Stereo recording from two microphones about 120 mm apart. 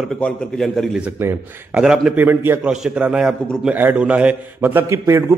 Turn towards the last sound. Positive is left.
turn(degrees=-25)  # may be behind; listen again after turning